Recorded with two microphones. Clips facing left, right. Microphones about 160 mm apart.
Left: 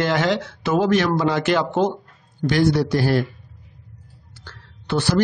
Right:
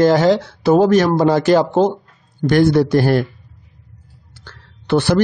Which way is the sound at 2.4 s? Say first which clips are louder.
Right 5 dB; 50° right (ahead or behind).